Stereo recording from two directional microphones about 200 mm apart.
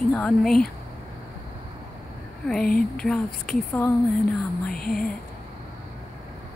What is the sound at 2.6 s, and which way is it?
Speech, 45° left (ahead or behind).